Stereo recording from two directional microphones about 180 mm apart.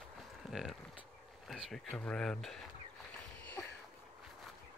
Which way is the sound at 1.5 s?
Centre (ahead or behind).